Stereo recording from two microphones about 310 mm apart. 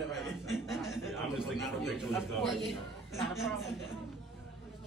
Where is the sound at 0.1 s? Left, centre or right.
Centre.